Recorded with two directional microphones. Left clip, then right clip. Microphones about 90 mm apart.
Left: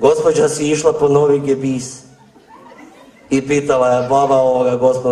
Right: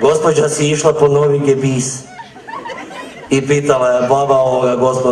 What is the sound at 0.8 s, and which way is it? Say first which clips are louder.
Speech: right 2 dB; 45° right (ahead or behind).